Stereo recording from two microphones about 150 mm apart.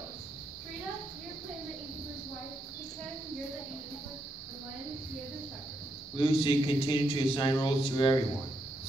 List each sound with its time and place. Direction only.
6.1 s a man's voice: 35° left (ahead or behind)